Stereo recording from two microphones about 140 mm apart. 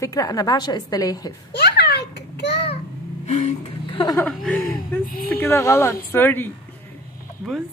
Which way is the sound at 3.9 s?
35° left (ahead or behind).